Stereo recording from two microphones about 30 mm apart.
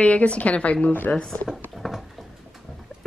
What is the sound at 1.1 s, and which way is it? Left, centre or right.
Speech, left.